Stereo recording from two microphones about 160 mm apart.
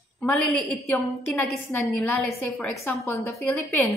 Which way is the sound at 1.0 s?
Centre (ahead or behind).